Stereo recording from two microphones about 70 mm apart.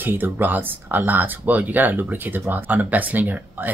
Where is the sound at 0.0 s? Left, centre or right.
Right.